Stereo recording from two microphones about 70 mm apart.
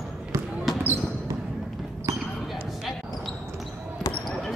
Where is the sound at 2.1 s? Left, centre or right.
Right.